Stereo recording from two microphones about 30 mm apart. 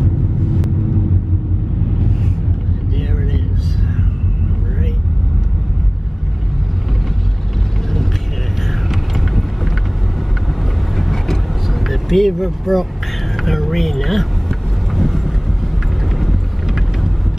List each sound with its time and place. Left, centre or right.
0.0 s vehicle: centre
3.0 s vehicle: centre
9.1 s vehicle: centre
11.0 s vehicle: centre
11.8 s speech: centre
13.4 s vehicle: centre